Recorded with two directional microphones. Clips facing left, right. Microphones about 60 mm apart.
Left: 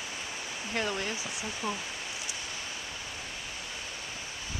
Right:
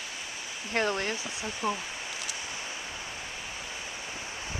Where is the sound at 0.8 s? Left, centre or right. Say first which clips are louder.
Right 4 dB; right.